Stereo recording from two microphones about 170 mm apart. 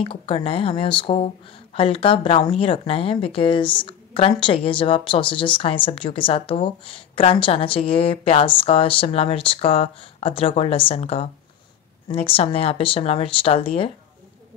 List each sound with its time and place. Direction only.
0.0 s a woman's voice: 30° left (ahead or behind)